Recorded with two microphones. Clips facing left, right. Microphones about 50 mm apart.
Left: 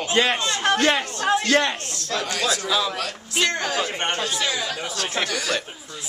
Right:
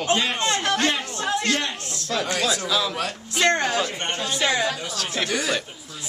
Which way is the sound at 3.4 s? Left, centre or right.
Right.